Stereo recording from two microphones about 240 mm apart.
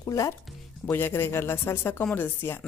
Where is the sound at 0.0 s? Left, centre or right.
Centre.